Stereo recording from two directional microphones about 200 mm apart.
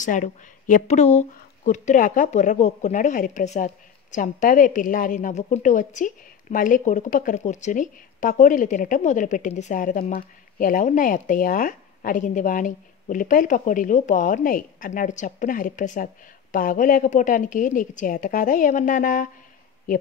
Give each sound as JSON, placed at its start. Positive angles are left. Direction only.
{"t": 0.0, "sound": "speech", "side_deg": 40}